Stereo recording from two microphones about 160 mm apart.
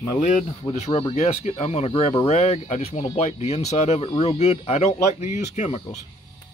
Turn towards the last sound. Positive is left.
turn(degrees=45)  # may be behind; listen again after turning